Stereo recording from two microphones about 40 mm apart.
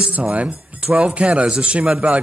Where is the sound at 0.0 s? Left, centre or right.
Right.